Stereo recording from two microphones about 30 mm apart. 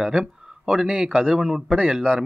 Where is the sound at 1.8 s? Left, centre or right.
Right.